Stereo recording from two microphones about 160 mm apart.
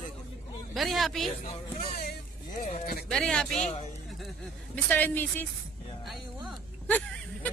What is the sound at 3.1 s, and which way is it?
Speech, 5° left (ahead or behind).